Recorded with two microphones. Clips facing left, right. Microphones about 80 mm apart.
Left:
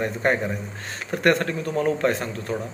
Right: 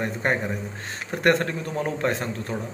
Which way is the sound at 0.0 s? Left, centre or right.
Centre.